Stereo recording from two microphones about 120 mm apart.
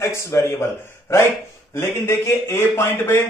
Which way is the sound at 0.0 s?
20° left (ahead or behind).